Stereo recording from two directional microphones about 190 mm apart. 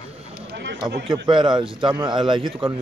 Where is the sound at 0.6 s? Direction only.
60° right (ahead or behind).